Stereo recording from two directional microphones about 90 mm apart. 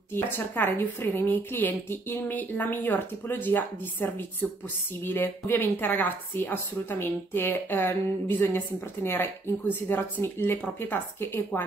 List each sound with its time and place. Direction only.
0.1 s a woman's voice: 25° left (ahead or behind)